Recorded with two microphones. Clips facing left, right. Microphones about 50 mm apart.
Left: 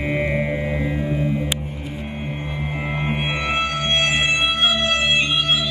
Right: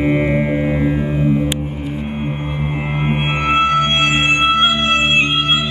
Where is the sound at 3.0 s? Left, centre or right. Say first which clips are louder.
Right 7 dB; right.